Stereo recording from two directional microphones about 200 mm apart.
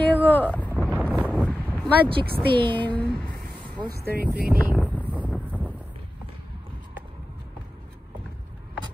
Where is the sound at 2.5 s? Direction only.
25° right (ahead or behind).